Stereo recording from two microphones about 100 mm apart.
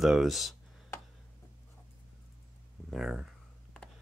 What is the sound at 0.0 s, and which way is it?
Speech, 5° right (ahead or behind).